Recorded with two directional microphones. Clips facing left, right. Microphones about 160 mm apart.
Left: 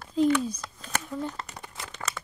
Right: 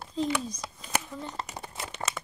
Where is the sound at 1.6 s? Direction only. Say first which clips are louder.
Right 3 dB; 30° right (ahead or behind).